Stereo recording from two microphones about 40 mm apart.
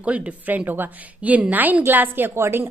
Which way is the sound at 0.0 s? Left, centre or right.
Right.